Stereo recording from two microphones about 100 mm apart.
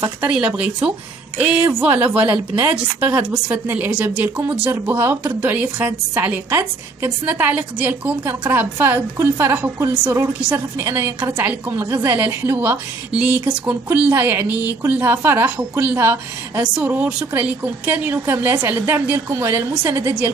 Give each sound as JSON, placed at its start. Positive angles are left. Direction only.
{"t": 0.2, "sound": "a woman's voice", "side_deg": -10}
{"t": 11.8, "sound": "a woman's voice", "side_deg": -25}